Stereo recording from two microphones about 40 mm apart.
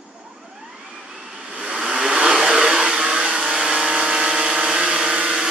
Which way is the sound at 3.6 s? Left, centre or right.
Centre.